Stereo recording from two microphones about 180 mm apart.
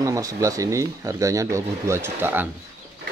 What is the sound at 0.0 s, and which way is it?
Speech, 20° right (ahead or behind).